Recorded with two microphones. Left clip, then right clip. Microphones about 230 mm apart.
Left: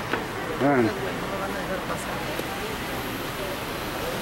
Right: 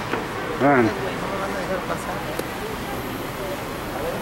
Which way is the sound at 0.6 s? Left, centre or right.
Centre.